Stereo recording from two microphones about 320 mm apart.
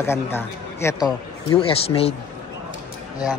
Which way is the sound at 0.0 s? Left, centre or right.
Centre.